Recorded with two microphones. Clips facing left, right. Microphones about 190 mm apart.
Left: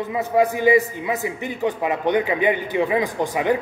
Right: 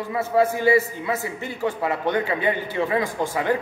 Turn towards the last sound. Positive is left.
turn(degrees=15)  # may be behind; listen again after turning